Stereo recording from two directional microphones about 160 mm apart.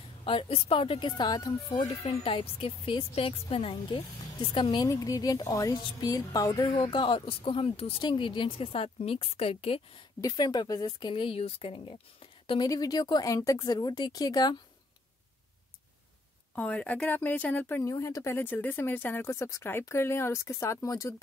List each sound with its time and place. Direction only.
0.2 s a woman's voice: 35° left (ahead or behind)
1.9 s a woman's voice: 35° left (ahead or behind)
10.2 s speech: 25° left (ahead or behind)
12.6 s speech: 25° left (ahead or behind)
16.5 s speech: 10° left (ahead or behind)